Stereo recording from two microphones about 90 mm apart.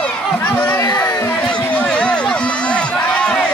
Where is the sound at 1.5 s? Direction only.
10° left (ahead or behind).